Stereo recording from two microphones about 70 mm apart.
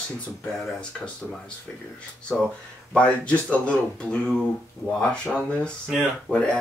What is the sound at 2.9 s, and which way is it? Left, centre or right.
Speech, centre.